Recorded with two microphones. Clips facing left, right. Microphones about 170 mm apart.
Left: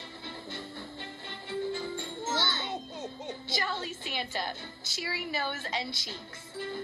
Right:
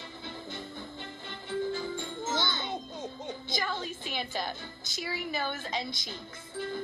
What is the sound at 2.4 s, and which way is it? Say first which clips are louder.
Music: right 1 dB; 5° left (ahead or behind).